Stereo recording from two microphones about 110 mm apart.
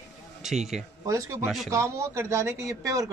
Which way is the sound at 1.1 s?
30° right (ahead or behind).